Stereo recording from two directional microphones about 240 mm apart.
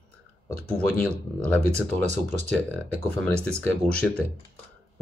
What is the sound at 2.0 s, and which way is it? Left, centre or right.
Speech, right.